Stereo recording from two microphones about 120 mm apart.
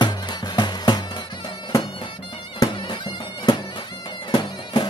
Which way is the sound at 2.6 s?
30° left (ahead or behind).